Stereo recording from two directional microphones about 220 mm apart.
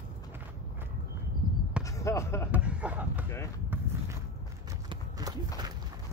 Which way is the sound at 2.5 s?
5° right (ahead or behind).